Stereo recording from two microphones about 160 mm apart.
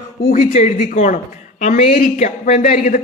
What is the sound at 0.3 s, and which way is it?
A woman's voice, 50° left (ahead or behind).